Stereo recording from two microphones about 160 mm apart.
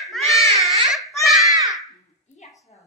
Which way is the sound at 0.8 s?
Centre (ahead or behind).